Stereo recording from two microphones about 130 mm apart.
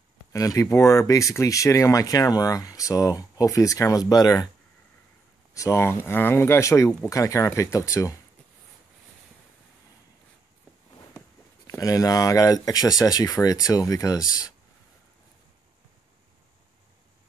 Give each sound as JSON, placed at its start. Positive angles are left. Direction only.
{"t": 0.3, "sound": "speech", "side_deg": 25}
{"t": 5.5, "sound": "speech", "side_deg": 25}
{"t": 11.7, "sound": "speech", "side_deg": 25}